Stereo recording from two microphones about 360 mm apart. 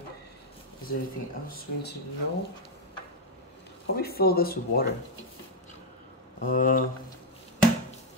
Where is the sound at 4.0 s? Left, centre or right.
Left.